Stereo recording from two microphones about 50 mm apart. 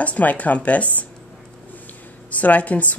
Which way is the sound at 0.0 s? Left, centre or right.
Left.